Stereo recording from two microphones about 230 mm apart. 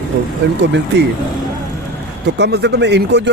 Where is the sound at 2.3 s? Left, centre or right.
Right.